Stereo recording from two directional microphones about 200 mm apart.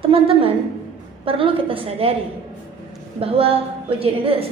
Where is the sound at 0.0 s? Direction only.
25° right (ahead or behind).